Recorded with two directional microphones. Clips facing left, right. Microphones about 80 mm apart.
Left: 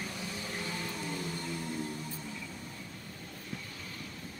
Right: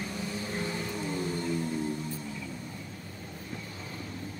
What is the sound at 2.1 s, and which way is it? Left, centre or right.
Vehicle, centre.